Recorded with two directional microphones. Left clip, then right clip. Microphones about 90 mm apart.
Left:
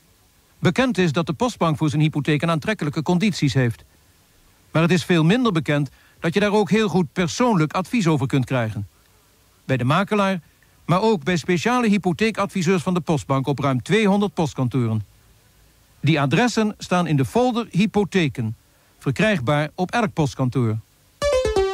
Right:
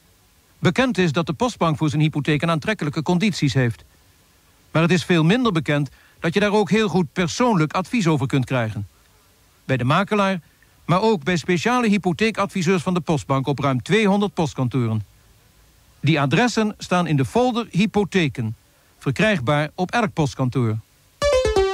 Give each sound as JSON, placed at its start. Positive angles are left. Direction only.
{"t": 0.6, "sound": "speech", "side_deg": -25}